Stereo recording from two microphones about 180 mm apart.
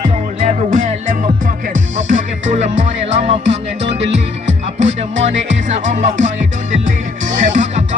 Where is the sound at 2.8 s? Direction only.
40° right (ahead or behind).